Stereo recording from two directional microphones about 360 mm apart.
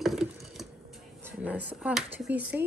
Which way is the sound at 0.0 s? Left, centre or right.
Centre.